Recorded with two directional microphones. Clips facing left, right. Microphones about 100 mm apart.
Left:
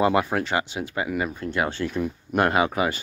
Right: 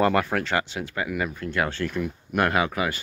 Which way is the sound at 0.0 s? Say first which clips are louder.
Left 1 dB; 15° left (ahead or behind).